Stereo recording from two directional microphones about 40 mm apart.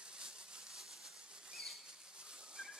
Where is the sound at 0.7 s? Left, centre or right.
Centre.